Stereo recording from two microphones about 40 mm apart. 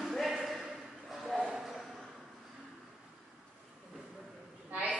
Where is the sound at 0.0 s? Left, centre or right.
Centre.